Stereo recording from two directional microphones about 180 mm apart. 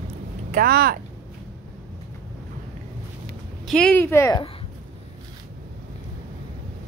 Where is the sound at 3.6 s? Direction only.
5° left (ahead or behind).